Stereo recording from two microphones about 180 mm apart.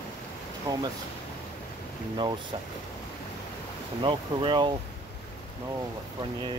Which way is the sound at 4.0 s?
25° right (ahead or behind).